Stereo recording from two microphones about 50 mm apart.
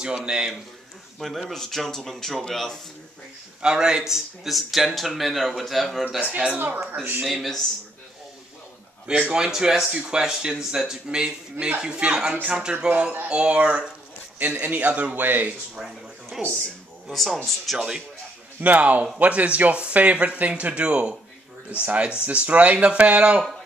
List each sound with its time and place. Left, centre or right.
0.0 s speech: centre
1.5 s speech: centre
3.6 s speech: centre
6.2 s speech: right
6.6 s speech: right
7.2 s speech: centre
9.3 s speech: centre; by 15.1 s right
15.1 s speech: right
16.3 s speech: centre
17.1 s speech: centre
17.7 s speech: centre
18.6 s speech: right